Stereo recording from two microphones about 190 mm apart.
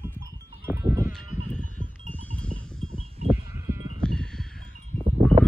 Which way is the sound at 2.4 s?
5° left (ahead or behind).